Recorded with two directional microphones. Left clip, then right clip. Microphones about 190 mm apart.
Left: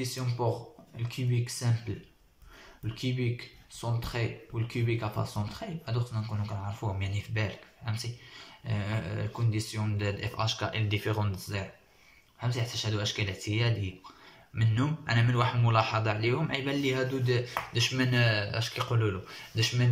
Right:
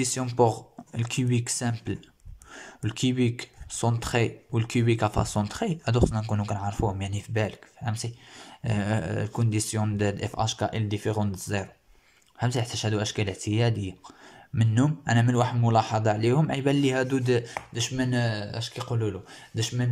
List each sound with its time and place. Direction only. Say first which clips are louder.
0.0 s a man's voice: right 9 dB; 50° right (ahead or behind); by 19.9 s 35° right (ahead or behind)